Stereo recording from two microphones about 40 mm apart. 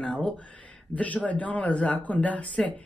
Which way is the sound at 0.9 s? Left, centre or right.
Left.